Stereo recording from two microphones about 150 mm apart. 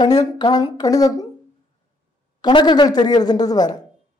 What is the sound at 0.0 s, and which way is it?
Speech, 30° left (ahead or behind).